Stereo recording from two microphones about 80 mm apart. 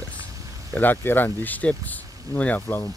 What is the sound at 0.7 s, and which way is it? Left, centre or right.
Speech, left.